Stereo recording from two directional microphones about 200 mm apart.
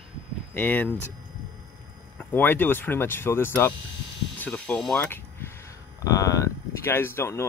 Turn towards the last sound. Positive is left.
turn(degrees=10)  # may be behind; listen again after turning